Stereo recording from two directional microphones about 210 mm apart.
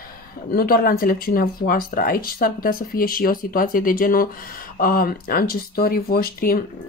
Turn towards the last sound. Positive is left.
turn(degrees=45)  # may be behind; listen again after turning